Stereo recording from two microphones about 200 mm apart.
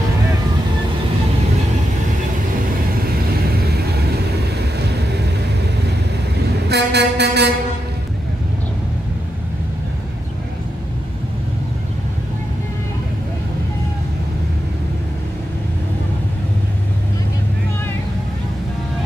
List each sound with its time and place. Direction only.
6.7 s vehicle: 55° right (ahead or behind)